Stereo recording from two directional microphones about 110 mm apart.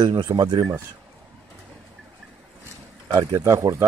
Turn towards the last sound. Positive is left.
turn(degrees=-30)  # may be behind; listen again after turning